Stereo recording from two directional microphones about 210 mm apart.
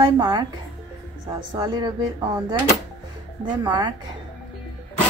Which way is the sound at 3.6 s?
20° right (ahead or behind).